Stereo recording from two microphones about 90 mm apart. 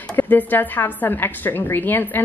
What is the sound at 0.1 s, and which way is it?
A woman's voice, 20° left (ahead or behind).